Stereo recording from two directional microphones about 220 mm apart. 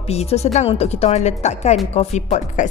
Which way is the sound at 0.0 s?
30° left (ahead or behind).